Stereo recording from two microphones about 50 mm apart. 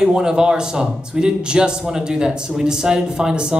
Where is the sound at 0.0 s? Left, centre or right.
Centre.